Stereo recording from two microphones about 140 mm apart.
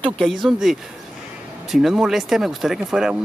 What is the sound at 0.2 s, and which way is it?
Speech, centre (ahead or behind).